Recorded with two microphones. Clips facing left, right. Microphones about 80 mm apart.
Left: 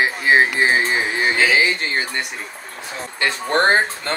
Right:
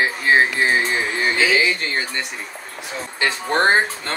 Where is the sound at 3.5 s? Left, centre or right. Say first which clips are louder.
Left 1 dB; centre.